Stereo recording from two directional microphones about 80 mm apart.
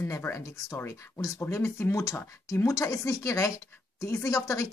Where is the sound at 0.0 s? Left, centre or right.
Left.